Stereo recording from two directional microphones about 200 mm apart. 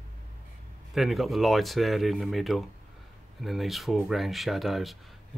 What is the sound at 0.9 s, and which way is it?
Speech, centre (ahead or behind).